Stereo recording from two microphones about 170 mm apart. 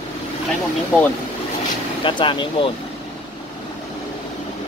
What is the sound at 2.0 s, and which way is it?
Speech, 30° left (ahead or behind).